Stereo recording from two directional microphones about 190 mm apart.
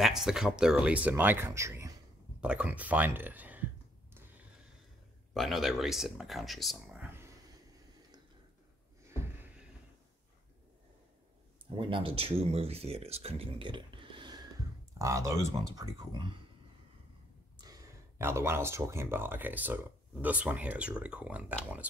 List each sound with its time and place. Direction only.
0.0 s speech: centre (ahead or behind)
5.3 s speech: centre (ahead or behind)
11.7 s speech: 25° right (ahead or behind)
17.6 s speech: 15° right (ahead or behind)